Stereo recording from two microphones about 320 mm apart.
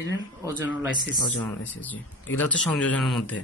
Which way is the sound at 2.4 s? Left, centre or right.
Centre.